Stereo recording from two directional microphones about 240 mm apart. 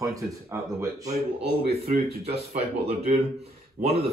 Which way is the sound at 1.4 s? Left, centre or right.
Right.